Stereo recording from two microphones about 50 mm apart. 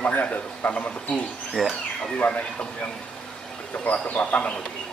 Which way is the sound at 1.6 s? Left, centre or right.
Centre.